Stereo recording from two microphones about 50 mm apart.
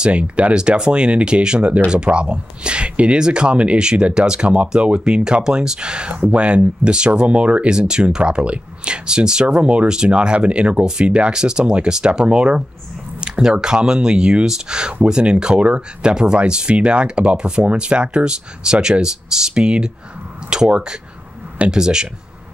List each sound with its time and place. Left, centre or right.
0.0 s speech: right